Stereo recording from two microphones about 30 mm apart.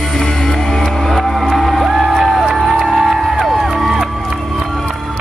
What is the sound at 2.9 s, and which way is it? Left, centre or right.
Music, right.